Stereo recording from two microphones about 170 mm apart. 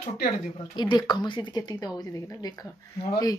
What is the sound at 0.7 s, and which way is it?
Speech, 25° left (ahead or behind).